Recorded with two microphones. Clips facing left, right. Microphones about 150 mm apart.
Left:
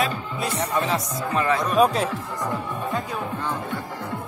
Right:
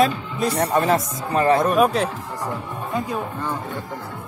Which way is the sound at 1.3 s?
30° right (ahead or behind).